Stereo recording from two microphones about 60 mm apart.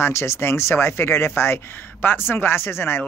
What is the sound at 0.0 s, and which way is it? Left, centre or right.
Speech, left.